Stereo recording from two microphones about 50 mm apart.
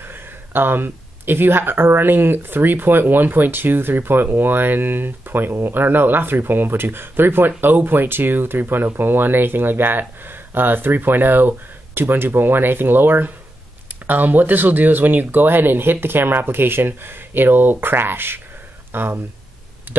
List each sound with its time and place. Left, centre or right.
0.1 s speech: right
19.9 s clicking: right